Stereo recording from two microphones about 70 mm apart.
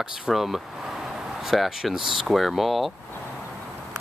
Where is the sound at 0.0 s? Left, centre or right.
Centre.